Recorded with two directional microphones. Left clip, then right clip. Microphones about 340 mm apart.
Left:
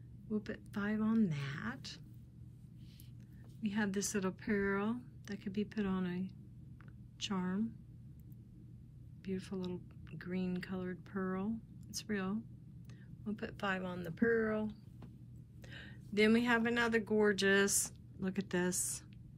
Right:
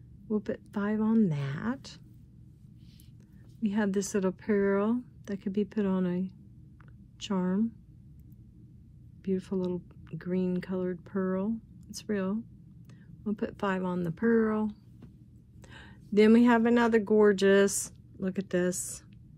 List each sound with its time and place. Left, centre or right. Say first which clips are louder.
0.3 s speech: right 9 dB; centre
3.6 s speech: right 8 dB; centre
9.2 s speech: right 11 dB; centre
15.7 s speech: right 11 dB; centre